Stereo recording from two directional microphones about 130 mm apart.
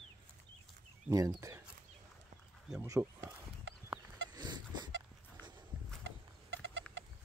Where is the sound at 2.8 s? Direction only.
25° right (ahead or behind).